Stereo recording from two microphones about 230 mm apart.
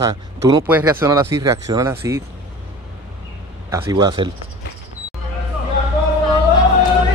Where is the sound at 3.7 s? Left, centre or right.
Centre.